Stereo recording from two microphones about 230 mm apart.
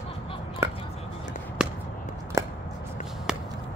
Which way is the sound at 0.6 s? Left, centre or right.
Centre.